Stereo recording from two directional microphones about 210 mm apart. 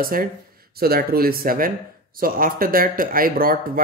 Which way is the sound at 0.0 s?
40° right (ahead or behind).